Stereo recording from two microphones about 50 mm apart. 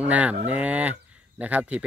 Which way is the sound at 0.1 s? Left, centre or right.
Right.